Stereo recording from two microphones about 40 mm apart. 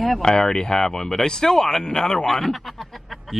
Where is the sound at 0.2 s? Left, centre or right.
Centre.